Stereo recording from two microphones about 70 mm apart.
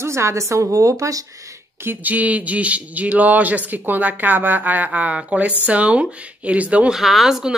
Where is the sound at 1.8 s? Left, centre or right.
Right.